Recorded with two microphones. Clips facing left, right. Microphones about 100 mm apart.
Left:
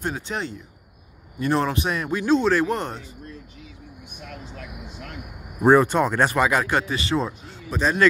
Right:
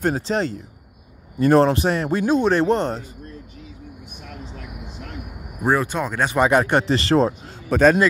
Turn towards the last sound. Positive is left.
turn(degrees=-50)  # may be behind; listen again after turning